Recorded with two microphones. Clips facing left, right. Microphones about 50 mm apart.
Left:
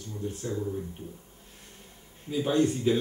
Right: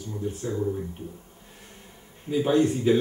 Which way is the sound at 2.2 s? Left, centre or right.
Centre.